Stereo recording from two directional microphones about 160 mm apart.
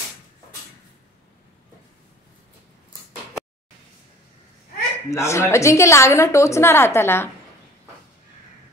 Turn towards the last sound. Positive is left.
turn(degrees=15)  # may be behind; listen again after turning